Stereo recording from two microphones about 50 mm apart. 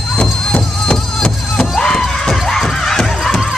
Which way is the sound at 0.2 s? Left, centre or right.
Left.